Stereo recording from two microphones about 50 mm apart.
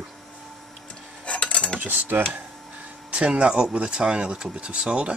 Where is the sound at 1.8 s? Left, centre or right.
Right.